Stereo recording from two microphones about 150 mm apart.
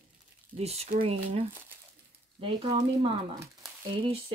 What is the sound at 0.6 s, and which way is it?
Speech, 45° right (ahead or behind).